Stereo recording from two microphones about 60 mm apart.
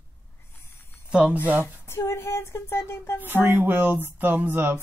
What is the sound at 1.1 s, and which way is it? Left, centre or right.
Speech, right.